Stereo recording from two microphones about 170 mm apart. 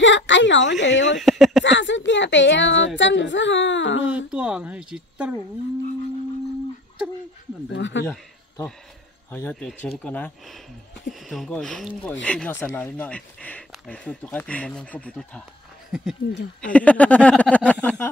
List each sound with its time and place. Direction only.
0.0 s a woman's voice: 90° left
1.1 s speech: centre (ahead or behind)
1.6 s speech: 90° left
4.3 s speech: 5° right (ahead or behind)
7.7 s speech: 90° left
9.3 s speech: 10° left (ahead or behind)
16.6 s speech: 10° left (ahead or behind)